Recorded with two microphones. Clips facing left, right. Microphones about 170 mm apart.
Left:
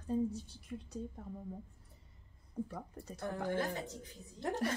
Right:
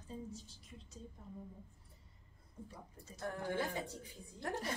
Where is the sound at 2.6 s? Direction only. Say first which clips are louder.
Left 8 dB; 60° left (ahead or behind).